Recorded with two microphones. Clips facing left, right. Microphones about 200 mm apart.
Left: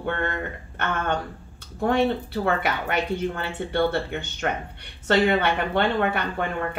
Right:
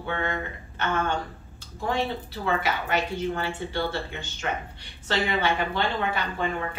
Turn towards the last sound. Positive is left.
turn(degrees=60)  # may be behind; listen again after turning